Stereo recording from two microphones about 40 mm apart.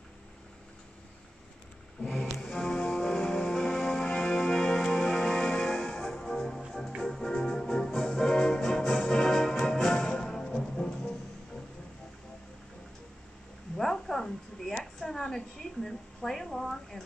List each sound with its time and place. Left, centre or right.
2.0 s music: centre
2.4 s music: centre
13.7 s a sound: centre